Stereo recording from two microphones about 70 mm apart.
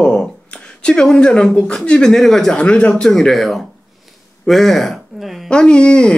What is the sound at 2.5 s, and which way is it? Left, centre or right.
Speech, centre.